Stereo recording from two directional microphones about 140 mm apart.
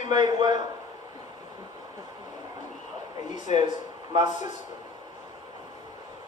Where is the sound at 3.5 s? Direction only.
35° right (ahead or behind).